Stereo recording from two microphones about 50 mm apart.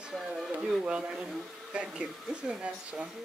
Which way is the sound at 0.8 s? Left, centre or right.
Centre.